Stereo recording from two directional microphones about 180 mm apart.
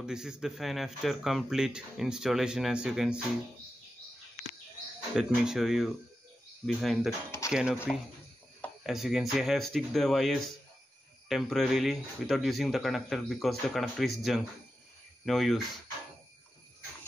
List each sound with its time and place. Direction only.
0.0 s speech: 5° right (ahead or behind)
5.1 s speech: centre (ahead or behind)
7.2 s speech: 15° left (ahead or behind)
7.5 s speech: 5° right (ahead or behind)